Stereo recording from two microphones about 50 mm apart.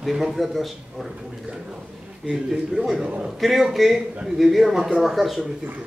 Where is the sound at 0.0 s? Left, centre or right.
Centre.